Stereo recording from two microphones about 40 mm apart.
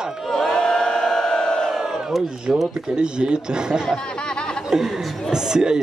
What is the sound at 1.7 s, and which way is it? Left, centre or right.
Crowd, centre.